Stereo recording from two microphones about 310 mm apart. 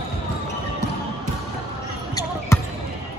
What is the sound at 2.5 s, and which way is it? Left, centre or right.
Basketball bounce, centre.